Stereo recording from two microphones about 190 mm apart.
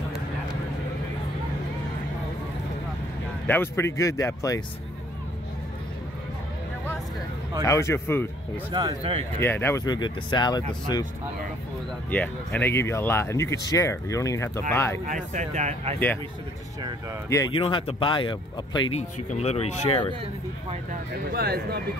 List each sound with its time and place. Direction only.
3.4 s speech: 10° left (ahead or behind)
7.6 s speech: 15° left (ahead or behind)
8.7 s speech: 25° right (ahead or behind)
9.4 s speech: 10° left (ahead or behind)
12.1 s speech: 10° left (ahead or behind)
15.0 s speech: 40° right (ahead or behind)
17.5 s speech: 25° left (ahead or behind)
18.9 s speech: 35° left (ahead or behind)
20.9 s speech: 55° right (ahead or behind)